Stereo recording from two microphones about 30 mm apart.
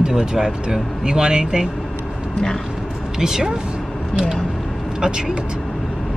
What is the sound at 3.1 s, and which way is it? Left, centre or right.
Speech, centre.